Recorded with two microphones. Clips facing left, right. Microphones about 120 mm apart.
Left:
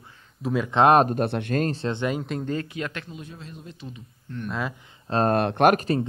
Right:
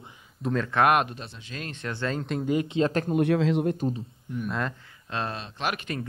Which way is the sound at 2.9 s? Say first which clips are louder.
Right 11 dB; 40° right (ahead or behind).